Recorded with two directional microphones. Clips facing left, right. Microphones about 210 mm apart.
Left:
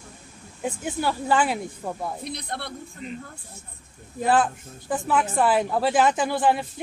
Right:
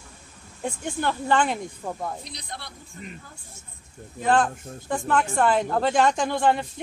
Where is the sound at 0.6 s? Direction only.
5° left (ahead or behind).